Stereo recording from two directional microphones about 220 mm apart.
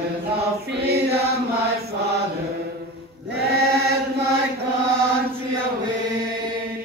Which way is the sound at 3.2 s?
45° right (ahead or behind).